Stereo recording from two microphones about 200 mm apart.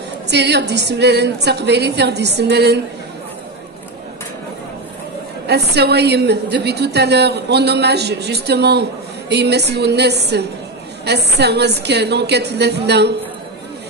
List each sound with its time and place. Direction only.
0.3 s a woman's voice: 60° right (ahead or behind)
5.5 s a woman's voice: 55° right (ahead or behind)